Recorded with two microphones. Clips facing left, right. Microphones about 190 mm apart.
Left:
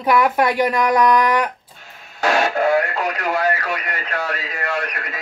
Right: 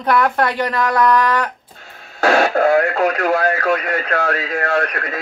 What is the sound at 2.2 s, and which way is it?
Radio, 55° right (ahead or behind).